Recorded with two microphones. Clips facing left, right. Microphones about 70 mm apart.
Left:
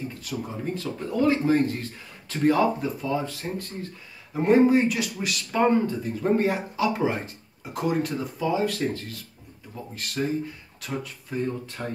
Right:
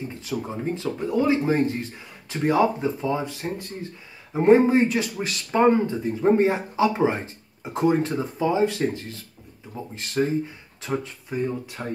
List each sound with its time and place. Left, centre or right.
0.1 s speech: right
5.5 s speech: right
11.3 s speech: centre